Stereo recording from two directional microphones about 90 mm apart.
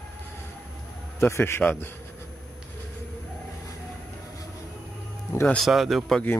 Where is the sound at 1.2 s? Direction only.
25° left (ahead or behind).